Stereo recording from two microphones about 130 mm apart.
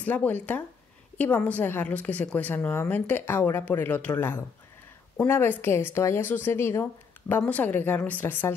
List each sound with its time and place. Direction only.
0.0 s speech: 15° left (ahead or behind)